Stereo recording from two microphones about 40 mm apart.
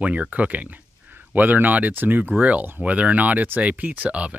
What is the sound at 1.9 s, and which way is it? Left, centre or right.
Speech, right.